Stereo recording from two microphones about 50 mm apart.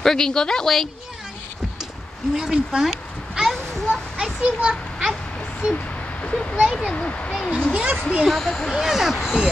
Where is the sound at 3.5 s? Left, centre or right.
Centre.